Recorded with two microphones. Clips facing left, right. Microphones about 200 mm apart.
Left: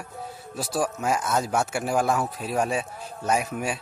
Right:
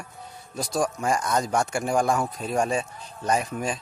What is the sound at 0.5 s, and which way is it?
Speech, 5° left (ahead or behind).